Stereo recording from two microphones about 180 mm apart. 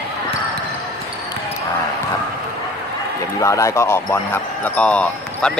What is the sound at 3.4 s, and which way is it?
Speech, 15° left (ahead or behind).